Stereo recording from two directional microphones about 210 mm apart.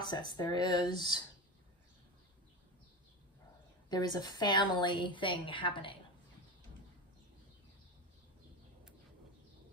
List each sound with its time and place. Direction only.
0.0 s a woman's voice: 20° left (ahead or behind)
3.9 s a woman's voice: 20° left (ahead or behind)